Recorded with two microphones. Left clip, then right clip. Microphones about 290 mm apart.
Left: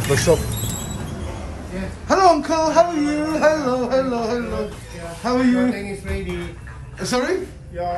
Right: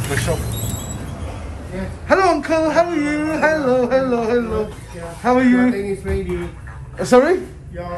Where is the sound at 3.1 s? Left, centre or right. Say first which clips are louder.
Even; centre.